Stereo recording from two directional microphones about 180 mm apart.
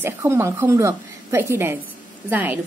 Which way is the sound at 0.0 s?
15° right (ahead or behind).